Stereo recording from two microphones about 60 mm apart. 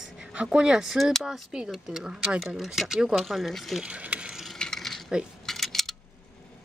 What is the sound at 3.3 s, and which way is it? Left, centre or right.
Speech, centre.